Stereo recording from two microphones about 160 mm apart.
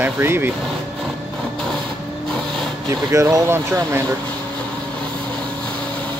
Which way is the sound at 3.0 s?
20° right (ahead or behind).